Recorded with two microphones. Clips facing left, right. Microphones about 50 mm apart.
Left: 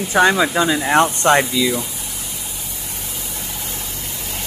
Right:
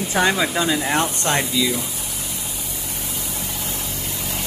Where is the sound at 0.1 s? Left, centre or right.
Centre.